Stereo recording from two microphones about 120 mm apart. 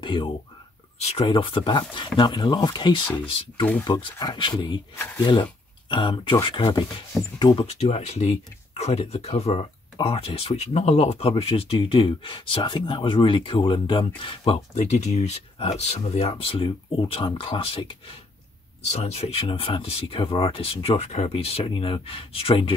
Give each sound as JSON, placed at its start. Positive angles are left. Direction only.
{"t": 0.0, "sound": "speech", "side_deg": 40}
{"t": 0.9, "sound": "speech", "side_deg": 60}
{"t": 1.2, "sound": "speech", "side_deg": 45}
{"t": 4.9, "sound": "speech", "side_deg": 20}
{"t": 5.2, "sound": "speech", "side_deg": 40}
{"t": 7.5, "sound": "speech", "side_deg": 60}
{"t": 18.9, "sound": "speech", "side_deg": 65}